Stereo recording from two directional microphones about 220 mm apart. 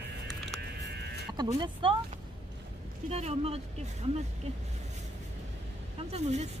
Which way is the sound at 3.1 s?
30° right (ahead or behind).